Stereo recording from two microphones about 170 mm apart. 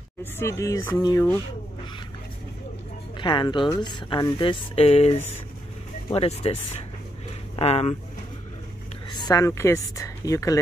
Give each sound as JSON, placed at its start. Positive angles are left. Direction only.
{"t": 0.2, "sound": "speech", "side_deg": 15}
{"t": 3.2, "sound": "speech", "side_deg": 30}
{"t": 9.1, "sound": "speech", "side_deg": 25}